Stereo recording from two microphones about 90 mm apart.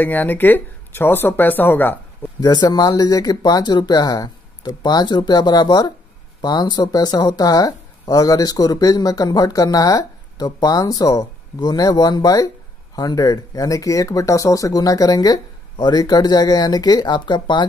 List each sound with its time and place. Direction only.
0.0 s speech: 20° left (ahead or behind)
2.4 s speech: 50° left (ahead or behind)